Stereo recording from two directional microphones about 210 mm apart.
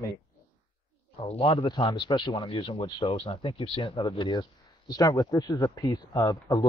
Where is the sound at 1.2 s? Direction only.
30° left (ahead or behind).